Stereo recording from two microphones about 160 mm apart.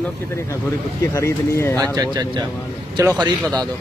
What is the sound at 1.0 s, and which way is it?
Speech, 20° left (ahead or behind).